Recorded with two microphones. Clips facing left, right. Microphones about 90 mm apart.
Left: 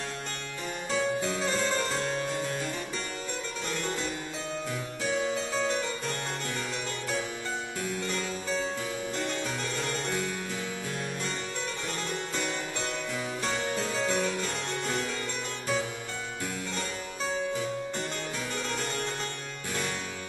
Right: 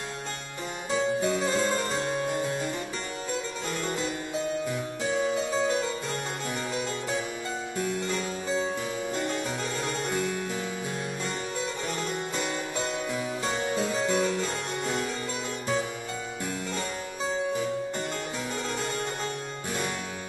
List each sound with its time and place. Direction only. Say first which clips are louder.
0.9 s harpsichord: right 3 dB; 15° right (ahead or behind)
4.6 s harpsichord: right 3 dB; 20° right (ahead or behind)
8.0 s harpsichord: right 2 dB; 20° right (ahead or behind)
13.1 s harpsichord: right 2 dB; 15° right (ahead or behind)